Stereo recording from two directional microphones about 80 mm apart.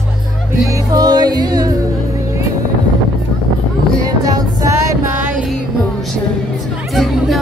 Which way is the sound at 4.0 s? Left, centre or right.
Right.